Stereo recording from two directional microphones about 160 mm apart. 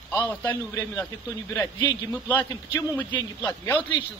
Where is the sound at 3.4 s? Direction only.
10° left (ahead or behind).